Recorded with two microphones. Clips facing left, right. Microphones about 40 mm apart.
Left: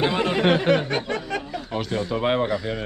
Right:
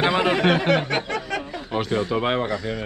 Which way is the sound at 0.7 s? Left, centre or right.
Right.